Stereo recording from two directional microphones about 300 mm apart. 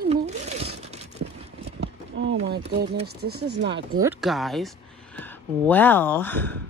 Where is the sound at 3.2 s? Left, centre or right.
Right.